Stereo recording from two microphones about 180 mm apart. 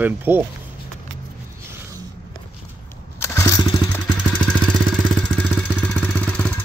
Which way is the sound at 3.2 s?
15° left (ahead or behind).